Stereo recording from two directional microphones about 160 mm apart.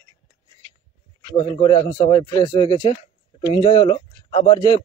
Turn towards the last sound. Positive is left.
turn(degrees=25)  # may be behind; listen again after turning